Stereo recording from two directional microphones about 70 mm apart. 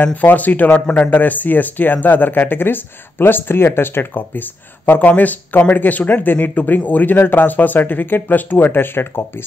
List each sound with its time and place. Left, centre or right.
0.0 s speech: left